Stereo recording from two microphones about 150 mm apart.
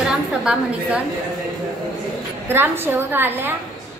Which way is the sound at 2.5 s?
15° right (ahead or behind).